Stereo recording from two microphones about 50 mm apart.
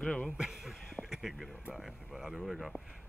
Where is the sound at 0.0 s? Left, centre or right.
Centre.